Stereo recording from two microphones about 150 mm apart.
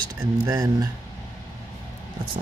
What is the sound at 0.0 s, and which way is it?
Speech, 25° right (ahead or behind).